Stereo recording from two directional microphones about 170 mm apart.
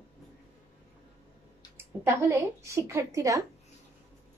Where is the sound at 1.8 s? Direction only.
15° right (ahead or behind).